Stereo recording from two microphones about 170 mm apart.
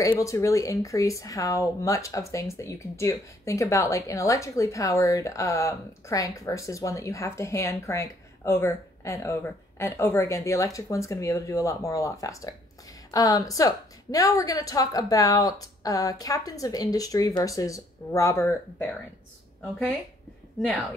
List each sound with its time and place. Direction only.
0.2 s a woman's voice: 20° left (ahead or behind)